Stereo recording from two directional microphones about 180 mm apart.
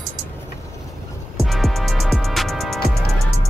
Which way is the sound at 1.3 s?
Centre (ahead or behind).